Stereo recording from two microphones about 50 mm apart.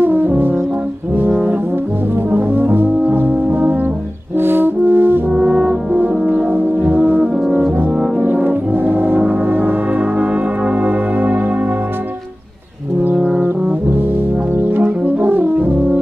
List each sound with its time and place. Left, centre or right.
0.0 s brass instrument: right
2.3 s brass instrument: right
4.4 s french horn: right
5.3 s brass instrument: centre
5.9 s french horn: right
6.9 s brass instrument: right
8.3 s brass instrument: right
10.7 s music: right
14.7 s music: right